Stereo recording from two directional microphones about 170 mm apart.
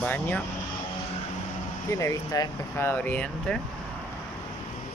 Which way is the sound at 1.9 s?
20° left (ahead or behind).